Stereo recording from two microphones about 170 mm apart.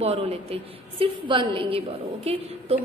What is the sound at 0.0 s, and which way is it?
A woman's voice, 35° right (ahead or behind).